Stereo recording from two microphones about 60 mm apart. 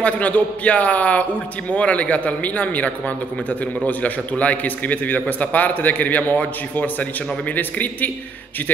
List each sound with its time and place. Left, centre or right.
0.0 s a man's voice: left